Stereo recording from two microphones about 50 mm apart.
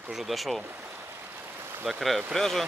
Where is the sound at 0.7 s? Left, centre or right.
Right.